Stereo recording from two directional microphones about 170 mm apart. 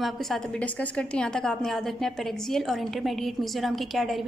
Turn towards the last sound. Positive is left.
turn(degrees=0)  # may be behind; listen again after turning